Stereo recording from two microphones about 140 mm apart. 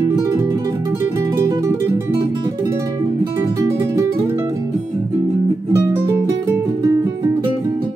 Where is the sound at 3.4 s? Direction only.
20° right (ahead or behind).